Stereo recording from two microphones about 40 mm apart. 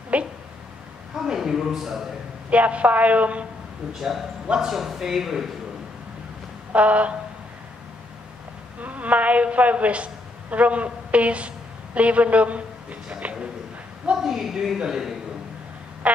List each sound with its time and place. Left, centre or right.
0.1 s a sound: right
1.2 s a man's voice: centre
2.5 s a woman's voice: right
4.6 s speech: centre
6.7 s a woman's voice: right
8.8 s a woman's voice: right
14.1 s speech: centre